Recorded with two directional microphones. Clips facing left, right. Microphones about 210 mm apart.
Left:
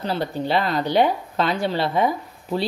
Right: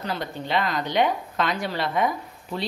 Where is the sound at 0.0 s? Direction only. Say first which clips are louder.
Left 6 dB; 30° left (ahead or behind).